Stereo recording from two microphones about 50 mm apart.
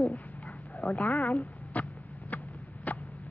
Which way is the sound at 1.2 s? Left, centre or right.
Left.